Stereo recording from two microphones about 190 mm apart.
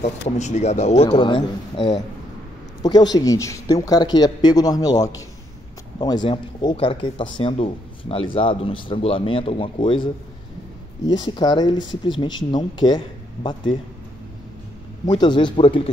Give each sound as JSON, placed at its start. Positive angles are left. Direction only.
{"t": 0.4, "sound": "speech", "side_deg": 35}
{"t": 11.1, "sound": "speech", "side_deg": 25}
{"t": 15.0, "sound": "speech", "side_deg": 25}